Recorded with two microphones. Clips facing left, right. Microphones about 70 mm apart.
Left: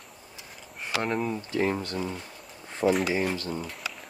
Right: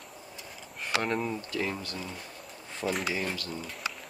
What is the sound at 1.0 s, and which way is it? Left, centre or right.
Speech, centre.